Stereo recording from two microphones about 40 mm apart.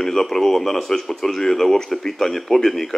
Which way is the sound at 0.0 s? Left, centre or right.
Centre.